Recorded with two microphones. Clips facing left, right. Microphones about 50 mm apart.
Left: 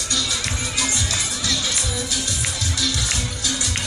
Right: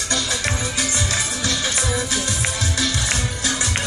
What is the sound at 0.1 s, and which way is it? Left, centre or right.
Music, right.